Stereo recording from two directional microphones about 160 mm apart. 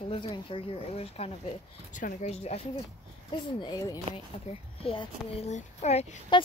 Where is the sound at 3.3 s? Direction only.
25° left (ahead or behind).